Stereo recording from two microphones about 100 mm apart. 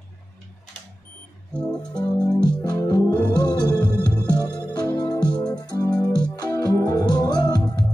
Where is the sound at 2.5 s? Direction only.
45° left (ahead or behind).